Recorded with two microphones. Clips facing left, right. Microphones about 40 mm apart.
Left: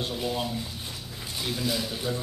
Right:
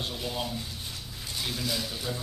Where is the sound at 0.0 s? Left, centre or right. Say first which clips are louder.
Left 4 dB; centre.